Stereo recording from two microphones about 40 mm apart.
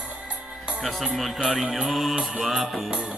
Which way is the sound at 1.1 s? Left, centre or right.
Centre.